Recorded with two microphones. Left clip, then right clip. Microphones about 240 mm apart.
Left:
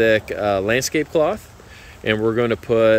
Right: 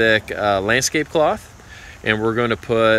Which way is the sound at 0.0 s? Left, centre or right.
Centre.